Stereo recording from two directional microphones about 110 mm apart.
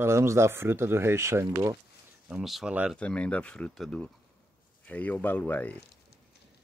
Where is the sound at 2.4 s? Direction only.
Centre (ahead or behind).